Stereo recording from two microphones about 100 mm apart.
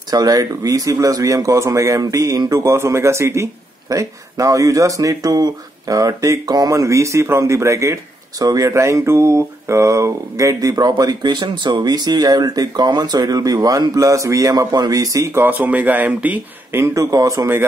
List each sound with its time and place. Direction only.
0.1 s speech: 40° right (ahead or behind)